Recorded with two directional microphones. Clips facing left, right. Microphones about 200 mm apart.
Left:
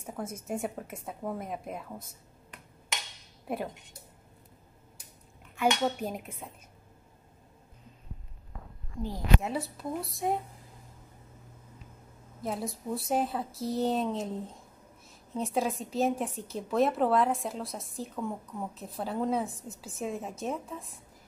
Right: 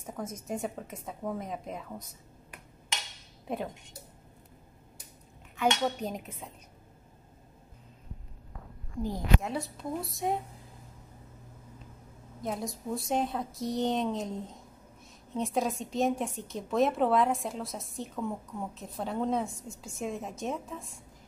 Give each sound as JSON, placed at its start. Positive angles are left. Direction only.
{"t": 0.0, "sound": "a woman's voice", "side_deg": 10}
{"t": 3.4, "sound": "a woman's voice", "side_deg": 5}
{"t": 5.6, "sound": "speech", "side_deg": 10}
{"t": 9.4, "sound": "a woman's voice", "side_deg": 5}
{"t": 12.4, "sound": "a woman's voice", "side_deg": 0}